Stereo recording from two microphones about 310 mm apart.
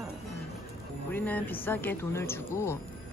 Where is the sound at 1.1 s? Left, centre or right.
Centre.